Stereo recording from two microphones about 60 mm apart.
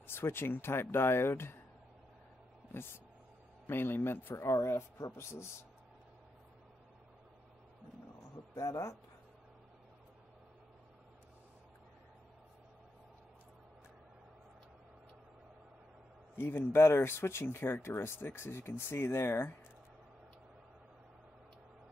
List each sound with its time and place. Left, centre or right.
0.0 s speech: left
2.7 s speech: left
4.6 s speech: left
8.5 s speech: left
16.3 s speech: left